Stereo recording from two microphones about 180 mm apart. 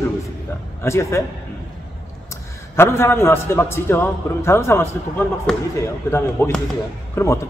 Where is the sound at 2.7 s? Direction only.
15° left (ahead or behind).